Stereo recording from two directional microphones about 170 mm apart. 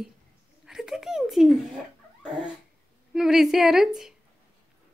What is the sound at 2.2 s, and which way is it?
Dog, 5° right (ahead or behind).